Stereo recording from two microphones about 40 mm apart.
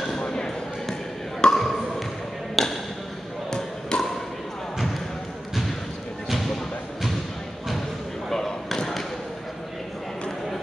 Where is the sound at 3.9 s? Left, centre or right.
Left.